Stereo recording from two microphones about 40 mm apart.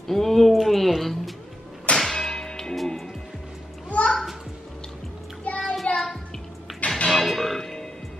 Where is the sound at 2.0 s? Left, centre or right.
Centre.